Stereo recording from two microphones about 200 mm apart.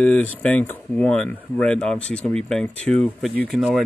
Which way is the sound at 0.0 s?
5° left (ahead or behind).